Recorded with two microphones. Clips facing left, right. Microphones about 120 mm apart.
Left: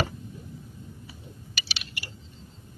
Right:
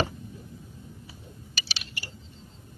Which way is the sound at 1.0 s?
35° right (ahead or behind).